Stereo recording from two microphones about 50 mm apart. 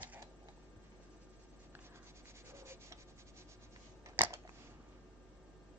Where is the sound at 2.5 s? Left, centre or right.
Right.